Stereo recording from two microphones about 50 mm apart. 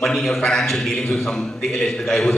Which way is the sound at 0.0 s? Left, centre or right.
Centre.